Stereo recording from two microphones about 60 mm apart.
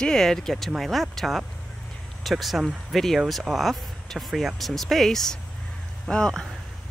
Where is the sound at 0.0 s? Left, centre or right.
Centre.